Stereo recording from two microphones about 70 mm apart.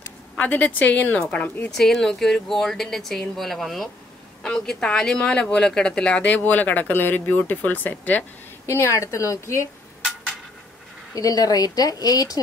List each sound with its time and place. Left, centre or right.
0.4 s speech: left
1.8 s speech: centre; by 8.3 s left
8.6 s a woman's voice: left
11.1 s speech: left